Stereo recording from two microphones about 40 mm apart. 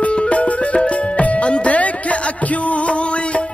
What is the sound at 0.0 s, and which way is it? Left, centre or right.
Music, left.